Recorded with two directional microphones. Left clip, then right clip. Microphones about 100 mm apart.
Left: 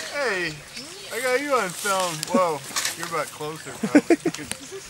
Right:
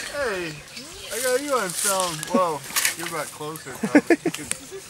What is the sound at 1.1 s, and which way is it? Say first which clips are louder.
Speech: left 1 dB; 10° left (ahead or behind).